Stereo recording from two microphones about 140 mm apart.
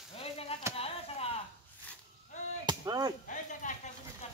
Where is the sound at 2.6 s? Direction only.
30° right (ahead or behind).